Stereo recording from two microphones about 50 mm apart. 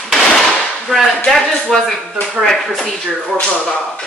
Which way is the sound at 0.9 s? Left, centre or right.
Centre.